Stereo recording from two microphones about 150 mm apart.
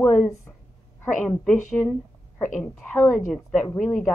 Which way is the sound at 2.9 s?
15° left (ahead or behind).